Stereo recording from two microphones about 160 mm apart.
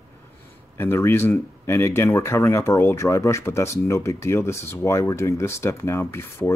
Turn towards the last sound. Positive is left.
turn(degrees=15)  # may be behind; listen again after turning